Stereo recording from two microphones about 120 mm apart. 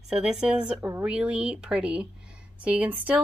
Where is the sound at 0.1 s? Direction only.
5° right (ahead or behind).